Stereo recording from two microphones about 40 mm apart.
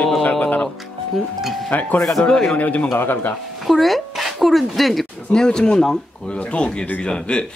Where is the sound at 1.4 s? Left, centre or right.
Centre.